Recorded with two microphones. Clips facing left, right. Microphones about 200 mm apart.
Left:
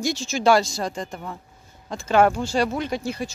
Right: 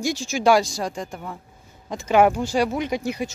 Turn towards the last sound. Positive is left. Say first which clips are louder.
# right 2 dB
turn(degrees=-20)  # may be behind; listen again after turning